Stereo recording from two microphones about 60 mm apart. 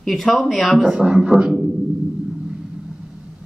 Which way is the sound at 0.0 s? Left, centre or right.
Centre.